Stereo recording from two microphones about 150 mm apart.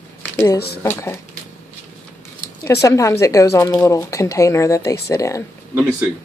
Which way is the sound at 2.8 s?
20° left (ahead or behind).